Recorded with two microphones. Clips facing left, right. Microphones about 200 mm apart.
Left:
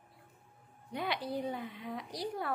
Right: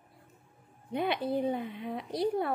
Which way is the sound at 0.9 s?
20° right (ahead or behind).